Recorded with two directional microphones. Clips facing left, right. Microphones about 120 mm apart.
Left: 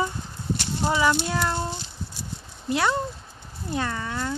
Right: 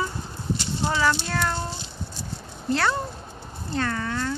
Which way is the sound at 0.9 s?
15° left (ahead or behind).